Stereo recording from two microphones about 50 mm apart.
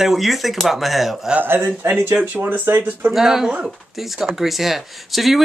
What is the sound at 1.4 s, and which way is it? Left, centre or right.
Speech, right.